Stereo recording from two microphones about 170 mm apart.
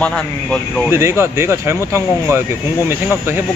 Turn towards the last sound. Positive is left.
turn(degrees=-15)  # may be behind; listen again after turning